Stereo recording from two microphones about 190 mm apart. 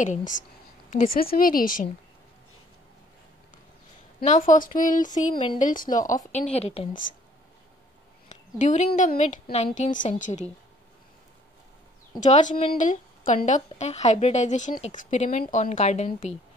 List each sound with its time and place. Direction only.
0.0 s a woman's voice: 40° left (ahead or behind)
4.2 s a woman's voice: 35° left (ahead or behind)
6.5 s speech: 30° left (ahead or behind)
8.3 s a woman's voice: 40° left (ahead or behind)
12.2 s speech: 40° left (ahead or behind)